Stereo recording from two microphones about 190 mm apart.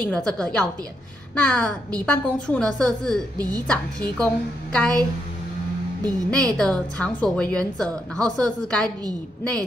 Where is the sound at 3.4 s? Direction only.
20° right (ahead or behind).